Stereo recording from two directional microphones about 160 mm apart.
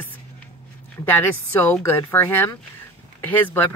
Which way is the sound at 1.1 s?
10° left (ahead or behind).